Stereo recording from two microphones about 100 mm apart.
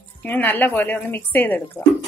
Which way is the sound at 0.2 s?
15° left (ahead or behind).